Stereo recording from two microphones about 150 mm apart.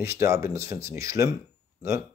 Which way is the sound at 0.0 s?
15° right (ahead or behind).